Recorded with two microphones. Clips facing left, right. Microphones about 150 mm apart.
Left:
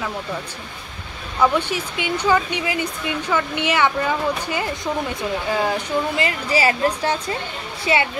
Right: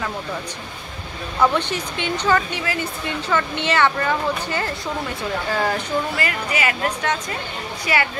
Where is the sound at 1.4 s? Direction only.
10° left (ahead or behind).